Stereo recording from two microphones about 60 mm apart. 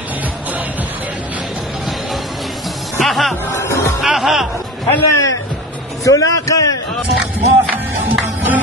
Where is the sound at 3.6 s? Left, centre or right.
Left.